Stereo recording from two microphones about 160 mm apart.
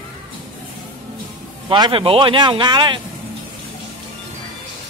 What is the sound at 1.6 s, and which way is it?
A man's voice, 30° right (ahead or behind).